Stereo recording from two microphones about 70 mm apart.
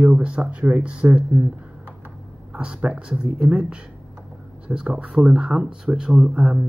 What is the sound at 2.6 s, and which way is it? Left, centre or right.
Speech, centre.